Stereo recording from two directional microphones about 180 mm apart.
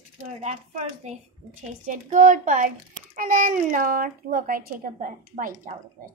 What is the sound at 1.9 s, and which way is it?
Speech, 45° right (ahead or behind).